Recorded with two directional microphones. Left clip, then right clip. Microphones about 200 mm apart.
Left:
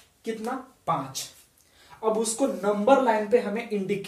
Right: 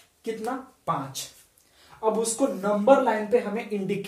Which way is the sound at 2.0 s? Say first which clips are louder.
Right 1 dB; 10° right (ahead or behind).